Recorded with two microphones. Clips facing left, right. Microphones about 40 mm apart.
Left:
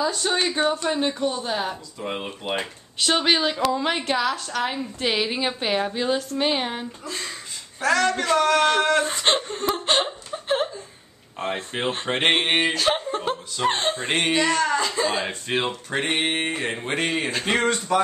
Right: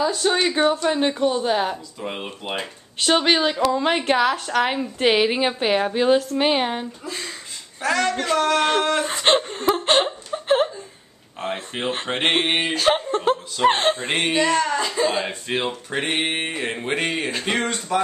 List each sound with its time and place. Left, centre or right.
0.0 s speech: centre
2.0 s speech: centre
4.1 s a woman's voice: right
4.6 s a woman's voice: right
5.1 s speech: centre
11.3 s speech: centre
13.7 s a woman's voice: right
13.9 s speech: centre